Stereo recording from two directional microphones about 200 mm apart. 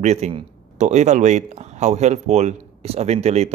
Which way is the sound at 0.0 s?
35° right (ahead or behind).